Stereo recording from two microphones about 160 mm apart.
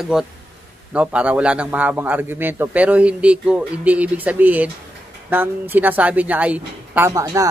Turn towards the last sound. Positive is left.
turn(degrees=-20)  # may be behind; listen again after turning